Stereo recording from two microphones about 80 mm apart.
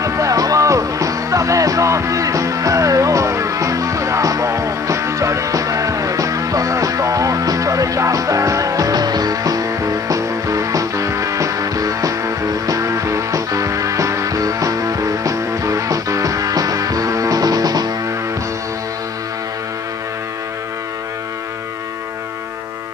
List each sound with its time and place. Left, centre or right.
0.0 s music: right